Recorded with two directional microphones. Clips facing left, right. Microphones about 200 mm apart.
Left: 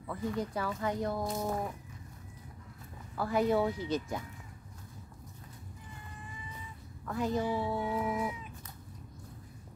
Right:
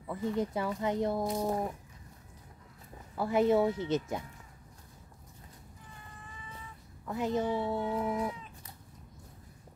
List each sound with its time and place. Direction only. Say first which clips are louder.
0.0 s speech: right 3 dB; 20° right (ahead or behind)
3.2 s speech: right 3 dB; 25° right (ahead or behind)
7.1 s speech: right 1 dB; 20° right (ahead or behind)
8.1 s cat: right 1 dB; 5° left (ahead or behind)